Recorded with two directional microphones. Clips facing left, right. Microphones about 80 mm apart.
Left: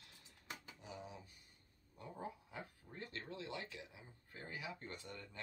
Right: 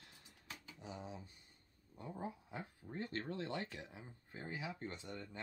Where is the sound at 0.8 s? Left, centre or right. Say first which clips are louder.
Right 6 dB; right.